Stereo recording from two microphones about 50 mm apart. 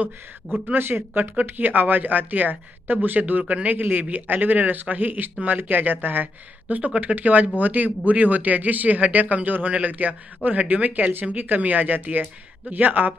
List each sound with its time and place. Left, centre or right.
0.7 s a man's voice: right